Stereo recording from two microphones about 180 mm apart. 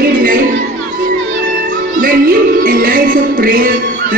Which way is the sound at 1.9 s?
50° right (ahead or behind).